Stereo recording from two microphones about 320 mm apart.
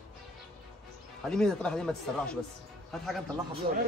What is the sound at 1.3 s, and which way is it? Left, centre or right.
A man's voice, centre.